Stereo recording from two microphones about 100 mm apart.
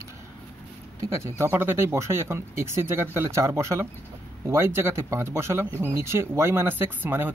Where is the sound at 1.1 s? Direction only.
25° right (ahead or behind).